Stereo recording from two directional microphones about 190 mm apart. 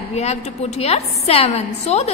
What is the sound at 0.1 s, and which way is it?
A woman's voice, 35° left (ahead or behind).